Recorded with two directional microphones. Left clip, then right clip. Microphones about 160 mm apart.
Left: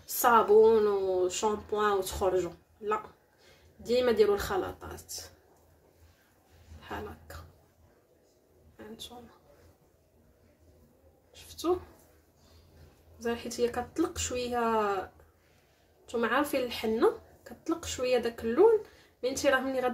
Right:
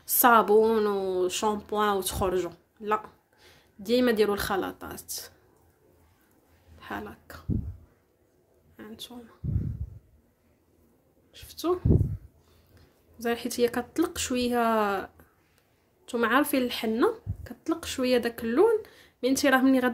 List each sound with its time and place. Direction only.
0.0 s speech: 65° right (ahead or behind)
6.8 s speech: 55° right (ahead or behind)
8.7 s a sound: 45° right (ahead or behind)
11.3 s a sound: 45° right (ahead or behind)
13.2 s speech: 60° right (ahead or behind)
16.1 s speech: 60° right (ahead or behind)